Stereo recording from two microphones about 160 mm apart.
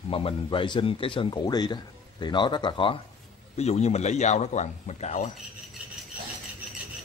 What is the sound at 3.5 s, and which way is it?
A man's voice, 40° left (ahead or behind).